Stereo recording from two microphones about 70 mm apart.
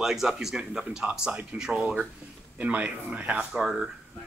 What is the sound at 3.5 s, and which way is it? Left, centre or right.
Speech, centre.